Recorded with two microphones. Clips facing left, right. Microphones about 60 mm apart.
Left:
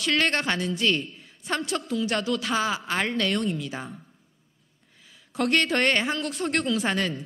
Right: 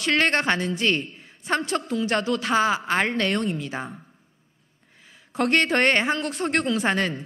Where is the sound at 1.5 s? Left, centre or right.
Right.